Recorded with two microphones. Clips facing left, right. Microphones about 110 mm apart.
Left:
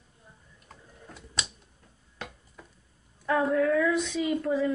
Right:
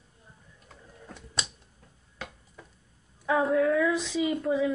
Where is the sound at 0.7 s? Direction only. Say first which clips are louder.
Right 1 dB; centre (ahead or behind).